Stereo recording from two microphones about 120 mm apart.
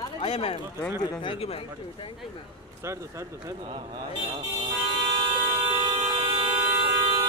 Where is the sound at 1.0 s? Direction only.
35° left (ahead or behind).